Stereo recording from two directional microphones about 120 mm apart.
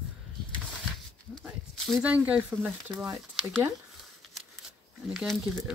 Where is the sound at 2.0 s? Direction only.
10° right (ahead or behind).